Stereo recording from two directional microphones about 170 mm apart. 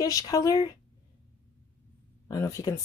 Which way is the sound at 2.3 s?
20° left (ahead or behind).